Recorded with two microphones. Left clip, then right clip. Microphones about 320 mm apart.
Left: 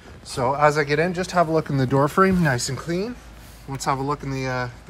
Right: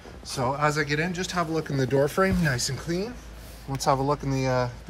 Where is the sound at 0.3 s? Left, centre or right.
Centre.